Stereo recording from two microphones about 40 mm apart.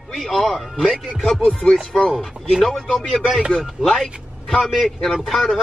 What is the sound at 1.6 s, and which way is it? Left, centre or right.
Speech, left.